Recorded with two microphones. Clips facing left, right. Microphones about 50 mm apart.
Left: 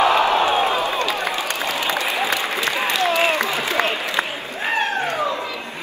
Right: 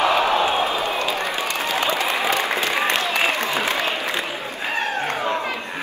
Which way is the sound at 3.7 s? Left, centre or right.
Left.